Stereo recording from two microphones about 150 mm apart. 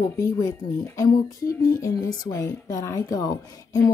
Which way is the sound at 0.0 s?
20° left (ahead or behind).